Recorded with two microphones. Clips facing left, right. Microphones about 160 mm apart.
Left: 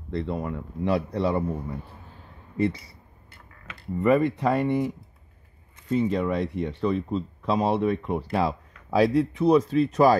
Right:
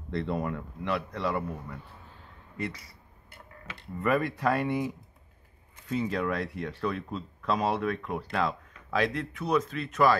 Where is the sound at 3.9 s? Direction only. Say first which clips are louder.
Left 7 dB; 20° left (ahead or behind).